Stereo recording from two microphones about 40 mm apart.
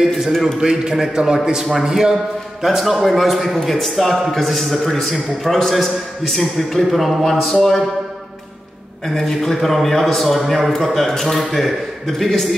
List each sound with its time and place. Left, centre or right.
0.6 s a man's voice: centre
9.0 s a man's voice: centre